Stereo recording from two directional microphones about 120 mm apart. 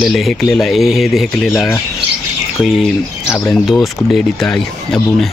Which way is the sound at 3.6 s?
Centre (ahead or behind).